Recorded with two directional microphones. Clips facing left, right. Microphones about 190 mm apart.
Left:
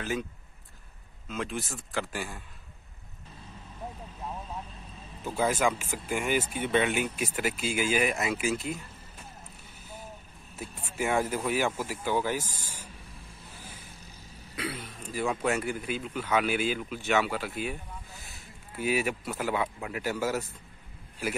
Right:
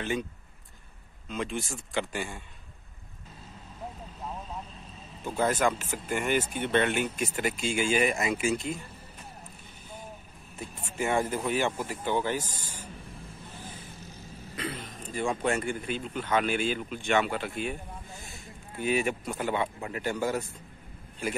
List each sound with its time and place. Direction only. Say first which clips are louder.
1.3 s speech: right 1 dB; centre (ahead or behind)
5.2 s speech: right 1 dB; 10° left (ahead or behind)
10.5 s speech: even; 5° left (ahead or behind)
13.6 s vehicle: right 4 dB; 10° left (ahead or behind)
14.5 s speech: even; 10° left (ahead or behind)
18.8 s speech: right 1 dB; 5° left (ahead or behind)